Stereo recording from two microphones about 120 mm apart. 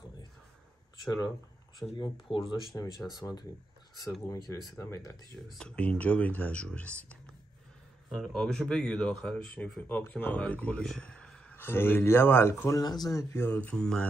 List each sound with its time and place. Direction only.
1.8 s speech: 40° left (ahead or behind)
2.7 s speech: 15° left (ahead or behind)
3.1 s speech: 35° left (ahead or behind)
5.5 s speech: 5° left (ahead or behind)
12.8 s speech: 35° left (ahead or behind); by 14.0 s 5° left (ahead or behind)